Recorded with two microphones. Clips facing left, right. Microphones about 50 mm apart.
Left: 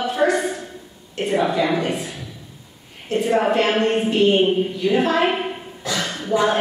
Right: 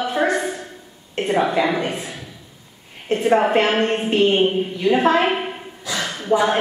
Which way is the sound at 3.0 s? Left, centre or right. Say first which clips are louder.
Right 2 dB; right.